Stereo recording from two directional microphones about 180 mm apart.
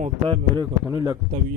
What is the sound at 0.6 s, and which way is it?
Speech, 20° right (ahead or behind).